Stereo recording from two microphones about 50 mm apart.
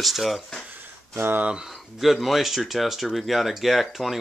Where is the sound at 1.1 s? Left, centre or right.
Right.